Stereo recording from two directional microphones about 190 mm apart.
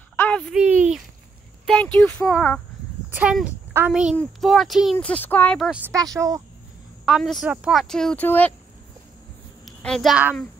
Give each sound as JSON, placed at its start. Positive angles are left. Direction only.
{"t": 0.1, "sound": "a sound", "side_deg": 10}
{"t": 0.6, "sound": "a sound", "side_deg": -10}
{"t": 1.7, "sound": "speech", "side_deg": 5}
{"t": 3.1, "sound": "speech", "side_deg": -5}
{"t": 4.9, "sound": "speech", "side_deg": 10}
{"t": 5.7, "sound": "speech", "side_deg": -10}
{"t": 7.1, "sound": "speech", "side_deg": 0}
{"t": 9.7, "sound": "a woman's voice", "side_deg": 5}